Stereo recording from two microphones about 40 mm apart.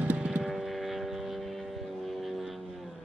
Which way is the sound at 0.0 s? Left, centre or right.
Right.